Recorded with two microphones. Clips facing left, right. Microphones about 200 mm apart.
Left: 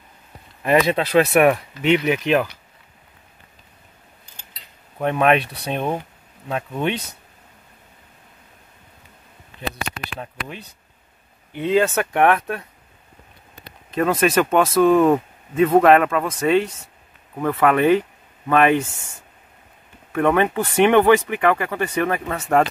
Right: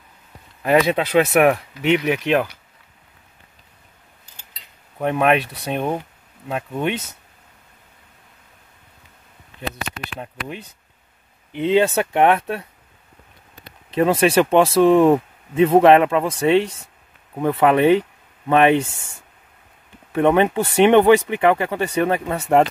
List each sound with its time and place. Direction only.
0.7 s speech: 10° right (ahead or behind)
4.9 s speech: 10° right (ahead or behind)
11.5 s speech: 25° right (ahead or behind)
13.9 s speech: 25° right (ahead or behind)
20.1 s speech: 25° right (ahead or behind)